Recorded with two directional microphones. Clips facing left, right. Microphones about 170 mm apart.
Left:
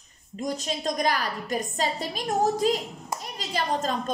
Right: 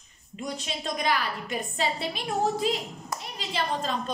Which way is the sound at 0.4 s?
40° left (ahead or behind).